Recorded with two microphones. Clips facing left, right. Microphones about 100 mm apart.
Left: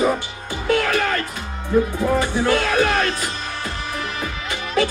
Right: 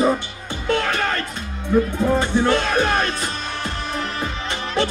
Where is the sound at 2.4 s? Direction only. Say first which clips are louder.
Even; 20° right (ahead or behind).